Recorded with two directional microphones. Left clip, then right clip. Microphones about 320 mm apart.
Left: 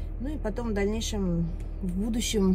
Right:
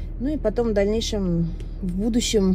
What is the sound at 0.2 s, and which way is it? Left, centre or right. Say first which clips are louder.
Speech: right 11 dB; centre.